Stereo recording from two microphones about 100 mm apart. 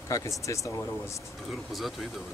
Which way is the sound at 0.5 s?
30° left (ahead or behind).